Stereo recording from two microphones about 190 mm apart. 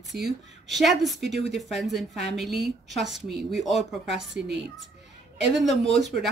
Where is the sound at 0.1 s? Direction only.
Centre (ahead or behind).